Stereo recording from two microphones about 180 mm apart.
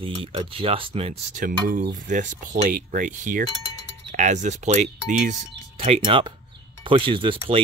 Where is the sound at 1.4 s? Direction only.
45° right (ahead or behind).